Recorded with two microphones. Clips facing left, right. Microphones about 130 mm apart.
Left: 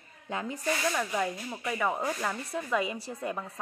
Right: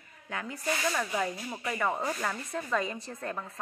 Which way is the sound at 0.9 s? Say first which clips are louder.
Even; centre (ahead or behind).